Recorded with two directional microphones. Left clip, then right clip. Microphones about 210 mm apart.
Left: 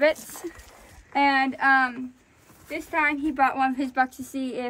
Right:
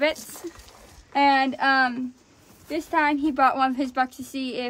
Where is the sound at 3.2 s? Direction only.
5° right (ahead or behind).